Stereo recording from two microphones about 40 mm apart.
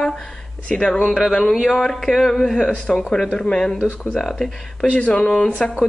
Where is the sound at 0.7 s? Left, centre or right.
Centre.